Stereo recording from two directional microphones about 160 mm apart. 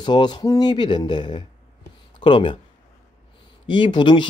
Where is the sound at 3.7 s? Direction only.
30° left (ahead or behind).